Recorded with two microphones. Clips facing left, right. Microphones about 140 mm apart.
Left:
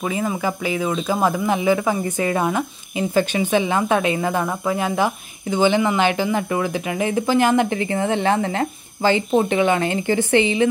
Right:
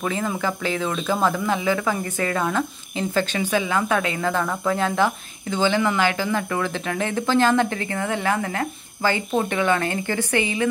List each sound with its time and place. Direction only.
0.0 s speech: 10° left (ahead or behind)